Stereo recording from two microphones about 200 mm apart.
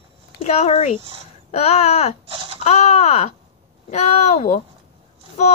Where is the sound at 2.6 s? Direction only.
30° left (ahead or behind).